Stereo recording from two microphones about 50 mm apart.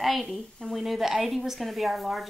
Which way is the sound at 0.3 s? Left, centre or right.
Centre.